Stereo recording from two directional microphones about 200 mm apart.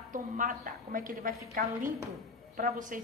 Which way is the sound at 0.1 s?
40° right (ahead or behind).